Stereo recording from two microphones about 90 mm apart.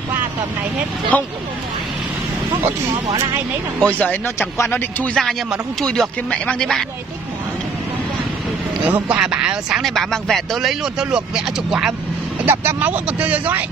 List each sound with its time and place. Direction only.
1.1 s speech: 15° left (ahead or behind)
3.8 s speech: 15° left (ahead or behind)
5.8 s speech: 5° left (ahead or behind)
6.3 s speech: 15° left (ahead or behind)
8.8 s speech: 20° right (ahead or behind)
12.4 s speech: 20° right (ahead or behind)